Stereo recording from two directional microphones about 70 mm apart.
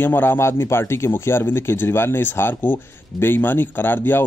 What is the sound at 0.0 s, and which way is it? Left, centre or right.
Speech, left.